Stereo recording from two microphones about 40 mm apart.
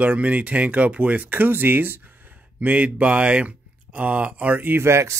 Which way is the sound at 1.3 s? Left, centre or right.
Right.